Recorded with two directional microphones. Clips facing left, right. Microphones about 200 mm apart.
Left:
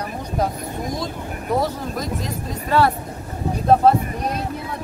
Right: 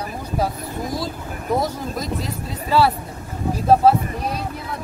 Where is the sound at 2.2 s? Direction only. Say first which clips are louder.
Left 1 dB; 10° right (ahead or behind).